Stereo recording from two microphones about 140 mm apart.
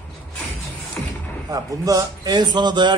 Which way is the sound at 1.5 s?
25° right (ahead or behind).